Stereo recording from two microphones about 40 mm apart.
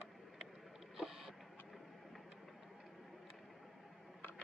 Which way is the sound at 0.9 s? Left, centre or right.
Centre.